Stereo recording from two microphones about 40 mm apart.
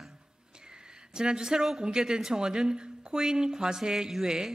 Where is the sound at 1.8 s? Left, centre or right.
Centre.